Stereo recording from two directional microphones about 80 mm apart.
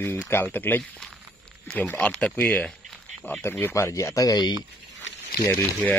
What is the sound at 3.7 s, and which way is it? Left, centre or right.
Speech, left.